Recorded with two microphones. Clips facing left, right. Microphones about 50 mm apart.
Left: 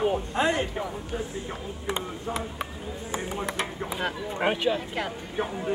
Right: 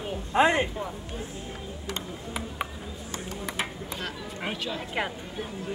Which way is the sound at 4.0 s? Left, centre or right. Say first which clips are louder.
Left 8 dB; left.